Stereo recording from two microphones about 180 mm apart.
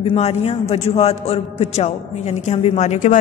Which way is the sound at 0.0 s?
35° left (ahead or behind).